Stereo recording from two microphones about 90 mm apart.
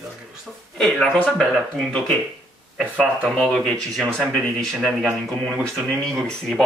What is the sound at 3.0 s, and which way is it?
Speech, 10° left (ahead or behind).